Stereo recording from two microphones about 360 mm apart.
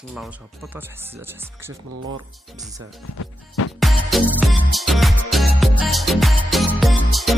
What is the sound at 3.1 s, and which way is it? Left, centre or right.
Music, left.